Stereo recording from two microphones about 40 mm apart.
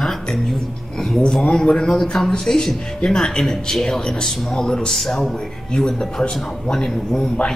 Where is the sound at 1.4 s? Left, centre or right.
Left.